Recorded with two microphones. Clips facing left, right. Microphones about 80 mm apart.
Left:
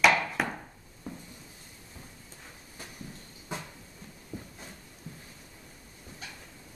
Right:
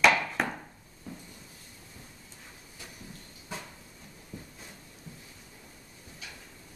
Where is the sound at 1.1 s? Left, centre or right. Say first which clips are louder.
Left 2 dB; left.